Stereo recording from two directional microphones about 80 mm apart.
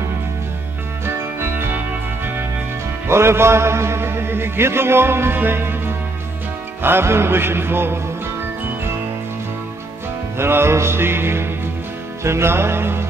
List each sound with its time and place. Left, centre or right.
1.0 s music: right
3.1 s a man's voice: right
6.8 s music: right
10.3 s music: right